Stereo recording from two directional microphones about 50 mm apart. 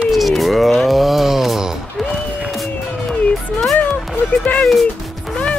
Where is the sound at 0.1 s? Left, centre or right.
Centre.